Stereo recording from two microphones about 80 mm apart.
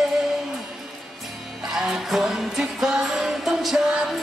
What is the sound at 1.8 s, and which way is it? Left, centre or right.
Music, centre.